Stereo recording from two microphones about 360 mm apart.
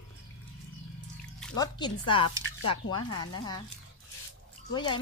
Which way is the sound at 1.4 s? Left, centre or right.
Centre.